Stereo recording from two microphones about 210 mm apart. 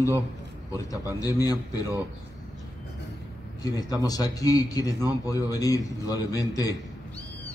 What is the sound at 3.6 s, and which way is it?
Speech, 15° left (ahead or behind).